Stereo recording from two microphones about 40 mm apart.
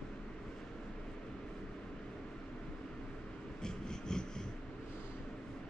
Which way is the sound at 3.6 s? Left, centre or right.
Centre.